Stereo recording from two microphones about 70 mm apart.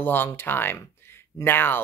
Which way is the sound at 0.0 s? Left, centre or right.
Left.